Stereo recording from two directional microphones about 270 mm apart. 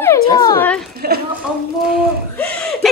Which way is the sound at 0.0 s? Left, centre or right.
Centre.